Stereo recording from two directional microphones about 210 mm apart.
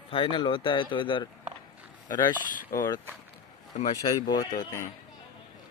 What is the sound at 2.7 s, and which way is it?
Speech, 15° left (ahead or behind).